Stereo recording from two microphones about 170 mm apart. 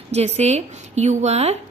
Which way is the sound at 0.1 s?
40° right (ahead or behind).